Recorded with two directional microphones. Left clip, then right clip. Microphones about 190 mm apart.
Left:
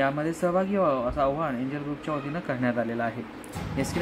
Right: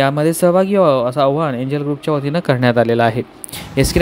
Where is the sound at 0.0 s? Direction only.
50° right (ahead or behind).